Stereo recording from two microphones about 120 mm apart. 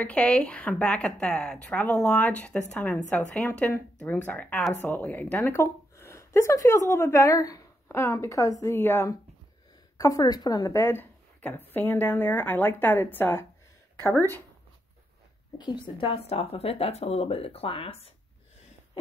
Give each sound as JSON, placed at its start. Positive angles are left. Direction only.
{"t": 0.0, "sound": "speech", "side_deg": 10}
{"t": 15.5, "sound": "speech", "side_deg": 40}